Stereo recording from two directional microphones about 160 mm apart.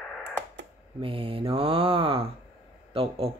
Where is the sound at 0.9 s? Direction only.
35° right (ahead or behind).